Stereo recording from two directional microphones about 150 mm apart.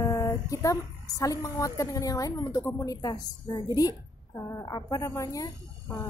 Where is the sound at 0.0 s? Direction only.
25° left (ahead or behind).